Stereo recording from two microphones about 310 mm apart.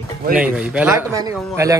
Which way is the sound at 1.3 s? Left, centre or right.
Centre.